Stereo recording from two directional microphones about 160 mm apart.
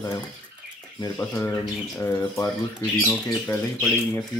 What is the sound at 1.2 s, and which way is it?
Speech, 15° left (ahead or behind).